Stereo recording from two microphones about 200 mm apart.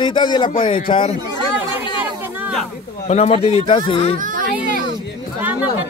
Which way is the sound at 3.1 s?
30° left (ahead or behind).